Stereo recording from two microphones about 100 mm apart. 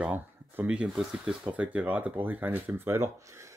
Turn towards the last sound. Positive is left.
turn(degrees=-30)  # may be behind; listen again after turning